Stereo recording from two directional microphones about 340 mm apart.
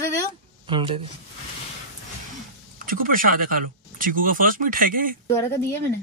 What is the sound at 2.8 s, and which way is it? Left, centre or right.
Speech, right.